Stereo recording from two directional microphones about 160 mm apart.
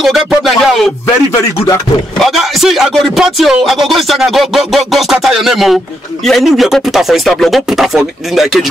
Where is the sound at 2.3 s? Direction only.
Centre (ahead or behind).